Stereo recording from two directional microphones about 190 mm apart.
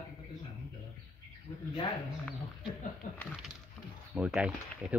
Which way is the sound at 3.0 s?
45° left (ahead or behind).